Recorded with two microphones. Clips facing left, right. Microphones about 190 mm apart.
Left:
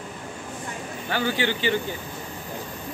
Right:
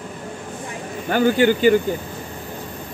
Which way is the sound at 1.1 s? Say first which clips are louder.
Right 9 dB; 45° right (ahead or behind).